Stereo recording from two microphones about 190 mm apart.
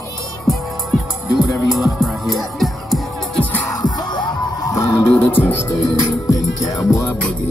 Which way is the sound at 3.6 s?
20° left (ahead or behind).